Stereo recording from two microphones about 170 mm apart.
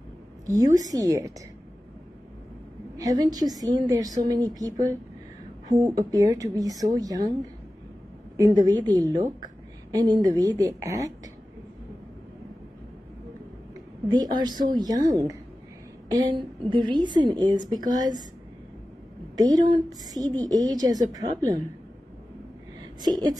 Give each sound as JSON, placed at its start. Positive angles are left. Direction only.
{"t": 0.5, "sound": "a woman's voice", "side_deg": -20}
{"t": 3.0, "sound": "a woman's voice", "side_deg": -20}
{"t": 8.4, "sound": "a woman's voice", "side_deg": -20}
{"t": 14.0, "sound": "a woman's voice", "side_deg": -25}
{"t": 19.3, "sound": "a woman's voice", "side_deg": -20}
{"t": 23.0, "sound": "a woman's voice", "side_deg": -25}